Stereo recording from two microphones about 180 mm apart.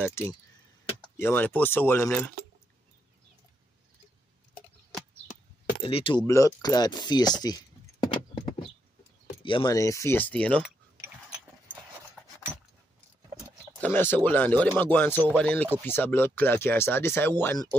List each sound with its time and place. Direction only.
0.0 s speech: 15° left (ahead or behind)
5.8 s speech: 30° left (ahead or behind)
6.2 s speech: 15° left (ahead or behind)
8.0 s keys jangling: 25° left (ahead or behind)
9.6 s speech: 20° left (ahead or behind)
13.7 s speech: 10° left (ahead or behind)